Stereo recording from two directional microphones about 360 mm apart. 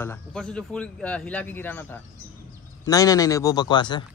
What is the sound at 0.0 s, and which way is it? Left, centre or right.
A man's voice, centre.